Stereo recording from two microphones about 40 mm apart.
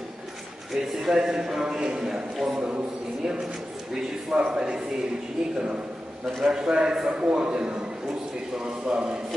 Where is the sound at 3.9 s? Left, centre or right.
Centre.